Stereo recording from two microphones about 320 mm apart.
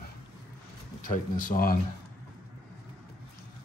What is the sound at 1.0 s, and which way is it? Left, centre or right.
Speech, left.